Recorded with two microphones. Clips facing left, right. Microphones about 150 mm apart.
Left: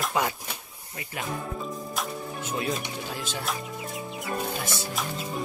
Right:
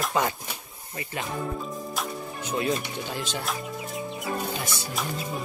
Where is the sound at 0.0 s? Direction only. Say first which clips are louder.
Right 1 dB; 5° left (ahead or behind).